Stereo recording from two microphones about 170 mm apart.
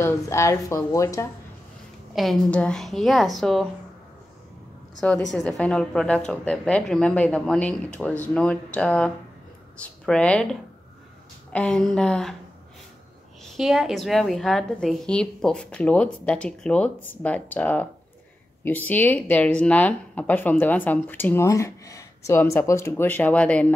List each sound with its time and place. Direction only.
0.0 s speech: 15° left (ahead or behind)
2.1 s a woman's voice: 5° left (ahead or behind)
5.3 s a woman's voice: 5° left (ahead or behind)
13.5 s a woman's voice: centre (ahead or behind)